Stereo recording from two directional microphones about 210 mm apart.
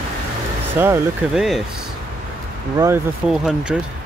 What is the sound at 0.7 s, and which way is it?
Speech, 10° right (ahead or behind).